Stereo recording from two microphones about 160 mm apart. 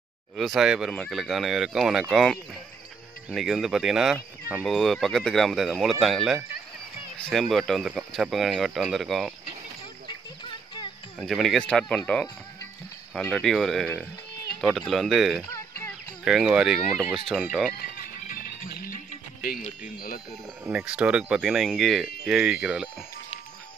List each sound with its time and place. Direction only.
0.4 s speech: centre (ahead or behind)
11.1 s speech: centre (ahead or behind)
17.9 s music: 65° left (ahead or behind)
19.6 s speech: 60° left (ahead or behind)
20.6 s speech: 5° right (ahead or behind)